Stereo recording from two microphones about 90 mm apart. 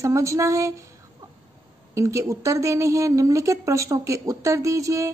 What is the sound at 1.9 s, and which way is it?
A woman's voice, 35° right (ahead or behind).